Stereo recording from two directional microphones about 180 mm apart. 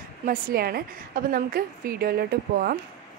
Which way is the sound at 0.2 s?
50° right (ahead or behind).